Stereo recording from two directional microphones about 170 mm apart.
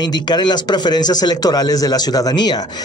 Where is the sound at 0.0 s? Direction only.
25° left (ahead or behind).